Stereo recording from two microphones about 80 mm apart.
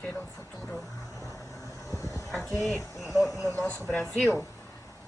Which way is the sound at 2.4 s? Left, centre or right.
Centre.